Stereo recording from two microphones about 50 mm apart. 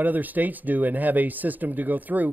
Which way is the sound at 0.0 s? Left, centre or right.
Right.